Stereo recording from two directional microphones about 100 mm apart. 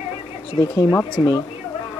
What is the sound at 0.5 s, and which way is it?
Speech, 40° left (ahead or behind).